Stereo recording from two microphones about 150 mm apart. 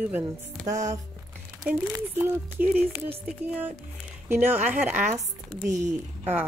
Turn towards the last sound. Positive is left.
turn(degrees=-15)  # may be behind; listen again after turning